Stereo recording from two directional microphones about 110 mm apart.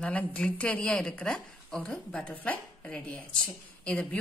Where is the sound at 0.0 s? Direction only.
10° left (ahead or behind).